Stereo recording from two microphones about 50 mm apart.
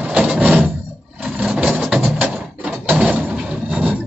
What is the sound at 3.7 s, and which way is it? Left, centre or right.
Printer, right.